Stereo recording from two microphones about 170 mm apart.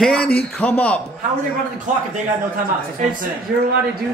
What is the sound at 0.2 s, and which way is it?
Speech, 65° left (ahead or behind).